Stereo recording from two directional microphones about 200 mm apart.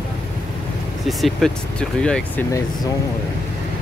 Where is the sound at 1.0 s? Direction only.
Centre (ahead or behind).